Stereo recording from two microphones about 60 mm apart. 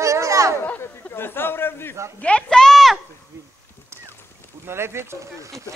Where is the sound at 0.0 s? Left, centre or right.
Right.